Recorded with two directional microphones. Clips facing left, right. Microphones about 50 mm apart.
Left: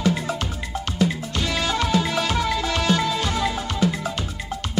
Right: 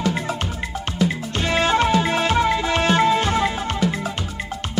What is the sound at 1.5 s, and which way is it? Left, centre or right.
Music, right.